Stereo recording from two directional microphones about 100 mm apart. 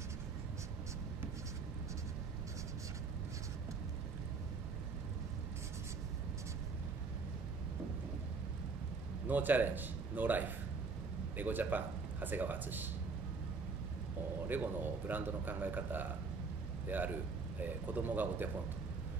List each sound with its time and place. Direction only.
9.3 s a man's voice: 20° right (ahead or behind)
14.5 s a man's voice: 20° right (ahead or behind)